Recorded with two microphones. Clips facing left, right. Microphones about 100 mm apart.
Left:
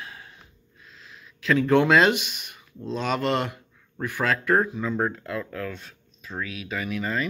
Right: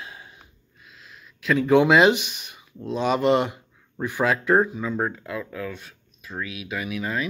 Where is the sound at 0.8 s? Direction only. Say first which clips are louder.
Even; 5° right (ahead or behind).